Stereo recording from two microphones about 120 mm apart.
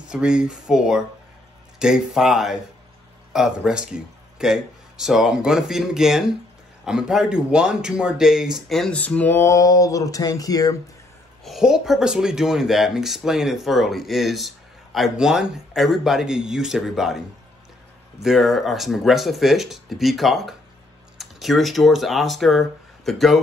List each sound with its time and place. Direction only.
0.1 s speech: 5° right (ahead or behind); by 9.5 s 15° left (ahead or behind)
9.5 s music: 30° left (ahead or behind)
11.4 s speech: centre (ahead or behind)
18.2 s speech: centre (ahead or behind)